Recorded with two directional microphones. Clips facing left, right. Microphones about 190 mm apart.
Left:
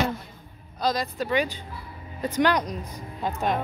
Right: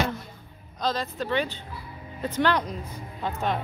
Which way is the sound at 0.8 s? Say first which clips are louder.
Left 2 dB; 10° left (ahead or behind).